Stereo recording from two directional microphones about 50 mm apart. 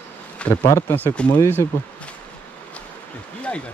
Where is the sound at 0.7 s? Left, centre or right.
Left.